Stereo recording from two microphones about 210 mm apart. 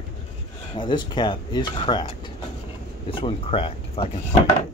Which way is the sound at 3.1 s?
25° left (ahead or behind).